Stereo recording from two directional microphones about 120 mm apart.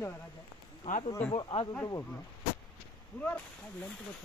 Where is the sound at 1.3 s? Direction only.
40° left (ahead or behind).